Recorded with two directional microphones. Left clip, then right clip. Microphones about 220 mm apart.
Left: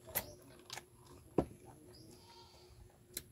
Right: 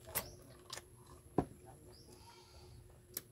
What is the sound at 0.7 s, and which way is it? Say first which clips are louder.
Biting: left 1 dB; centre (ahead or behind).